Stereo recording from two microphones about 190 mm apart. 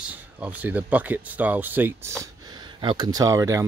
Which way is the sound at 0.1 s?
10° right (ahead or behind).